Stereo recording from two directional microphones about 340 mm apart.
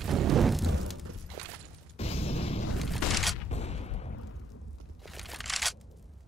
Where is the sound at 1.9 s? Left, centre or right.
Centre.